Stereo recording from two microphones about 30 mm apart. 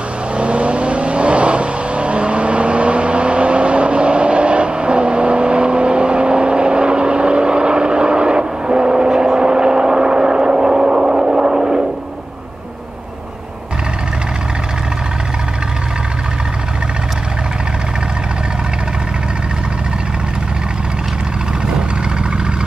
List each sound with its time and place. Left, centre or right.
0.4 s vehicle: right
9.1 s vehicle: centre
9.4 s vehicle: right